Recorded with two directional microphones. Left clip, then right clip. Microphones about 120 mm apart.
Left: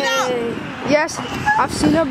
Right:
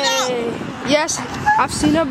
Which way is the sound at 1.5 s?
5° right (ahead or behind).